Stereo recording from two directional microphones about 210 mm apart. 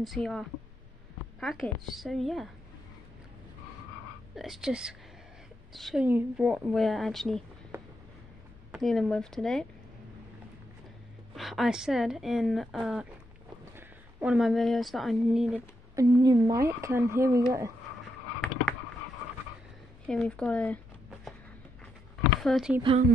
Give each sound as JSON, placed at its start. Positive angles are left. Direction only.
{"t": 0.0, "sound": "a woman's voice", "side_deg": 0}
{"t": 4.4, "sound": "a woman's voice", "side_deg": 0}
{"t": 8.7, "sound": "a woman's voice", "side_deg": 0}
{"t": 11.3, "sound": "a woman's voice", "side_deg": 0}
{"t": 16.0, "sound": "speech", "side_deg": -15}
{"t": 20.1, "sound": "a sound", "side_deg": 5}
{"t": 22.4, "sound": "a woman's voice", "side_deg": 0}
{"t": 22.8, "sound": "speech", "side_deg": -25}